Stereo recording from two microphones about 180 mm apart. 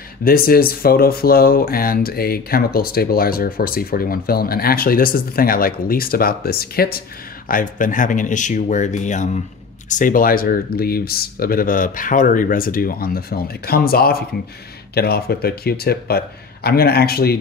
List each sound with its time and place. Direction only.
0.2 s speech: 55° left (ahead or behind)